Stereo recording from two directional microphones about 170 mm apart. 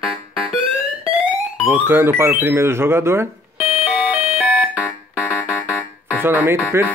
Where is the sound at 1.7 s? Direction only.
10° right (ahead or behind).